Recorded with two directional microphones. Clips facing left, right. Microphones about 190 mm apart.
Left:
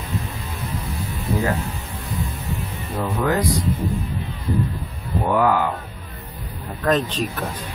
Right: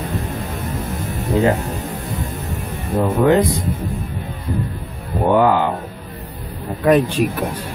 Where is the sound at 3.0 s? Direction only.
25° right (ahead or behind).